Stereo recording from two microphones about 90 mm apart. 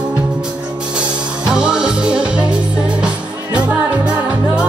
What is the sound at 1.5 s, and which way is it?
Music, 10° right (ahead or behind).